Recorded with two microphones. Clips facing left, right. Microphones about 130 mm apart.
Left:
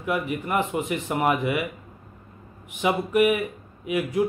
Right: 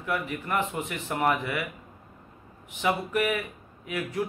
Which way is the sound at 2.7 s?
15° left (ahead or behind).